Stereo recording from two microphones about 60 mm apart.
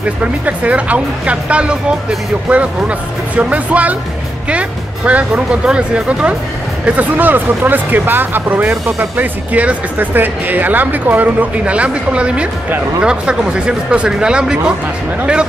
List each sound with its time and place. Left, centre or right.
0.0 s speech: right
7.0 s speech: right; by 14.6 s centre